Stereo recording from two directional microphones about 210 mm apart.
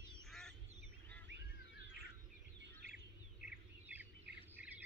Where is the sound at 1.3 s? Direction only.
60° right (ahead or behind).